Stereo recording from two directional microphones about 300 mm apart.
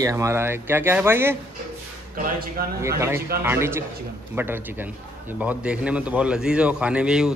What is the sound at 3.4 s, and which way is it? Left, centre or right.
A man's voice, centre.